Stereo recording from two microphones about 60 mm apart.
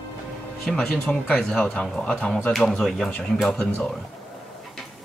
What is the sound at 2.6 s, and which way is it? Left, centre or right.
Speech, centre.